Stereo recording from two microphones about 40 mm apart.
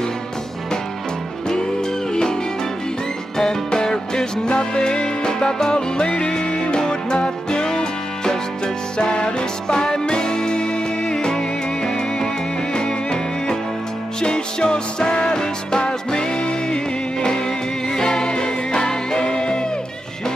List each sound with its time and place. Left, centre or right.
1.5 s music: centre
3.3 s music: centre